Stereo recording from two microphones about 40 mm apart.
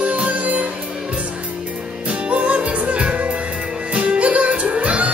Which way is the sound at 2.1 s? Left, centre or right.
Right.